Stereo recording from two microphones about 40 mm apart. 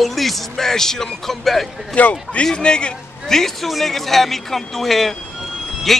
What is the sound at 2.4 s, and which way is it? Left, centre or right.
Speech, left.